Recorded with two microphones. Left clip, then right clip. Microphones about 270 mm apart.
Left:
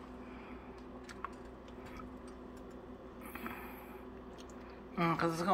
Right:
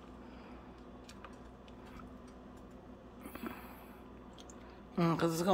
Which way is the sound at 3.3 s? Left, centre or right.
Right.